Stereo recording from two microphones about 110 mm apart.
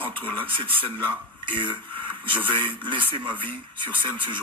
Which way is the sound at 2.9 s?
50° right (ahead or behind).